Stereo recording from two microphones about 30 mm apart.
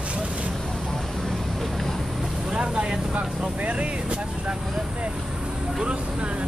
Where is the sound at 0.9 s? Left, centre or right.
Centre.